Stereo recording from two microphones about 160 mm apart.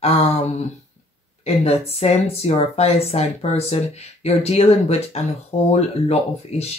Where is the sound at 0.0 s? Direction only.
40° left (ahead or behind).